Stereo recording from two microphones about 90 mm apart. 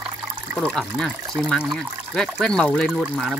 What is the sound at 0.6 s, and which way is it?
Speech, 5° left (ahead or behind).